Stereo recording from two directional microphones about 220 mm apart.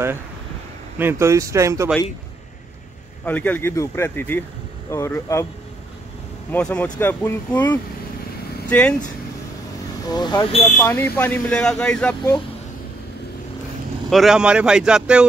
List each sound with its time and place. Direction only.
0.9 s speech: 10° right (ahead or behind)
3.3 s speech: 10° left (ahead or behind)
6.5 s speech: 5° left (ahead or behind)
10.0 s speech: 20° left (ahead or behind)
10.8 s speech: 10° left (ahead or behind)
14.1 s speech: centre (ahead or behind)